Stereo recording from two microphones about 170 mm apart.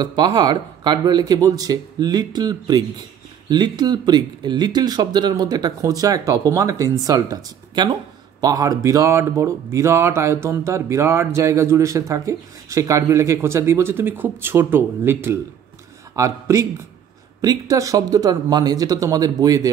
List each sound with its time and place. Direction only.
0.0 s speech: 25° right (ahead or behind)